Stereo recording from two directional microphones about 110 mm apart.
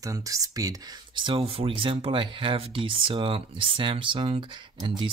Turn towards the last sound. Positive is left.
turn(degrees=-55)  # may be behind; listen again after turning